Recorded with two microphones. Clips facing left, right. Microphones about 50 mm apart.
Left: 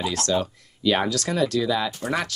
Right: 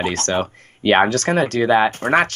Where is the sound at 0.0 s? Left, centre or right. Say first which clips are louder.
Right 3 dB; right.